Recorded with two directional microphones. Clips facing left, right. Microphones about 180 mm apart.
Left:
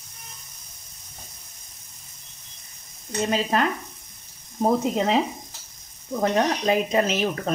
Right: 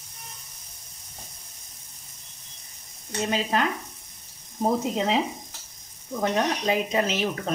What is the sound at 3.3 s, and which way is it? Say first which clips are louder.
Speech: left 2 dB; 45° left (ahead or behind).